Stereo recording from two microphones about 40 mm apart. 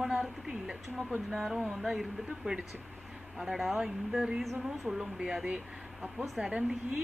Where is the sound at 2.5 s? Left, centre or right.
Right.